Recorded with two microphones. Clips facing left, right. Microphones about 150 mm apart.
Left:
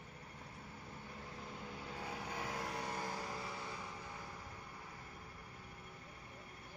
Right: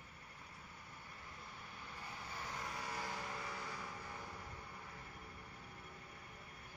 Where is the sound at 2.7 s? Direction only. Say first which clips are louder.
Left 3 dB; 30° left (ahead or behind).